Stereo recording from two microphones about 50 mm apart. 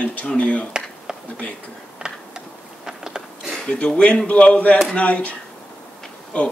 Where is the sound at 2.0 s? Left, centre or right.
Centre.